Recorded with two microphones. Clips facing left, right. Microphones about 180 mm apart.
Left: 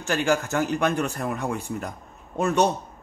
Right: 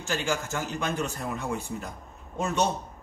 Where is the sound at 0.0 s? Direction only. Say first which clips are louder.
Left 6 dB; 60° left (ahead or behind).